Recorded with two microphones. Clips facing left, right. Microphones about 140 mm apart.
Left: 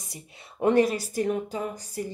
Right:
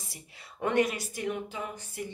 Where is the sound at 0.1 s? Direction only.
30° left (ahead or behind).